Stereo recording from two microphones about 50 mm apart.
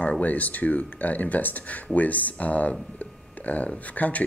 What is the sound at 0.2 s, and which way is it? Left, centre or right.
Speech, left.